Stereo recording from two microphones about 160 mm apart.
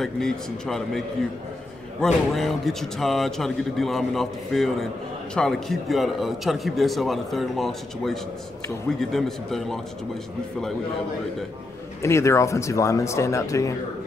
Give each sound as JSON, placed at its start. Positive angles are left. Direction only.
{"t": 0.0, "sound": "a man's voice", "side_deg": 0}
{"t": 12.0, "sound": "speech", "side_deg": 20}